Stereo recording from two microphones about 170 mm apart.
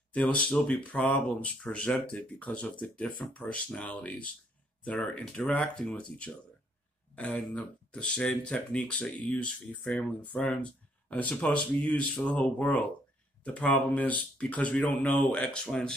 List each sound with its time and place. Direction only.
0.1 s speech: 5° left (ahead or behind)